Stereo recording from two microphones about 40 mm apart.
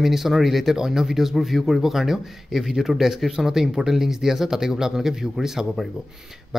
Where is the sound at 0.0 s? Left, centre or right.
Centre.